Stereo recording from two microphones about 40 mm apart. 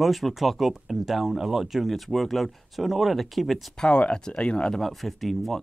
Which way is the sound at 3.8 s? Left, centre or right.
Left.